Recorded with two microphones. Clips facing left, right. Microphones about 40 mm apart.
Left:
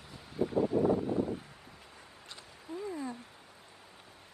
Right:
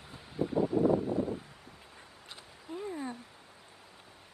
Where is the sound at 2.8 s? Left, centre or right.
Right.